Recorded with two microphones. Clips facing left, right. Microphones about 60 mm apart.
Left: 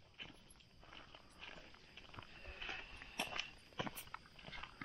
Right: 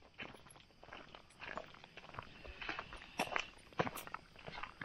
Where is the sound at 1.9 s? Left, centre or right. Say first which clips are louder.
Right 6 dB; right.